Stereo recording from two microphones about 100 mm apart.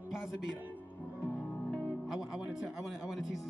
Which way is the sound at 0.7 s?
15° left (ahead or behind).